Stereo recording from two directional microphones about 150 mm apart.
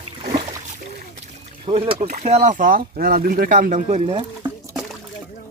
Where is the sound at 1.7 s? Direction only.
40° right (ahead or behind).